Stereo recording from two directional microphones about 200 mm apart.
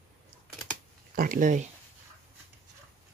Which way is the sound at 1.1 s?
45° right (ahead or behind).